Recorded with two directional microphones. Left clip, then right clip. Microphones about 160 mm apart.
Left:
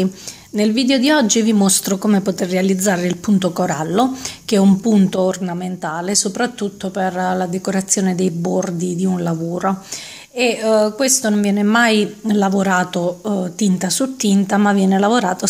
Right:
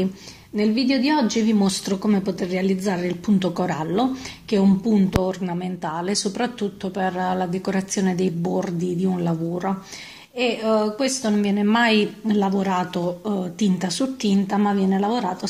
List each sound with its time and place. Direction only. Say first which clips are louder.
0.6 s a woman's voice: left 5 dB; 45° left (ahead or behind)
3.3 s a woman's voice: left 6 dB; 30° left (ahead or behind); by 5.4 s 45° left (ahead or behind)
5.4 s a woman's voice: left 4 dB; 25° left (ahead or behind); by 15.3 s 45° left (ahead or behind)